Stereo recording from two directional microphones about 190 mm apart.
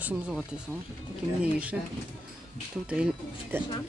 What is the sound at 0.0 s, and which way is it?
Speech, 10° right (ahead or behind).